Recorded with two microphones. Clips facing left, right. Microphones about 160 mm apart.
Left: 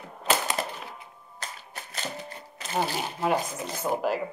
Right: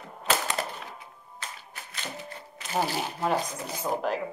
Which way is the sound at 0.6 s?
15° left (ahead or behind).